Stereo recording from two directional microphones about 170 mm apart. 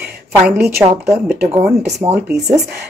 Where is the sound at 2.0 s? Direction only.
25° right (ahead or behind).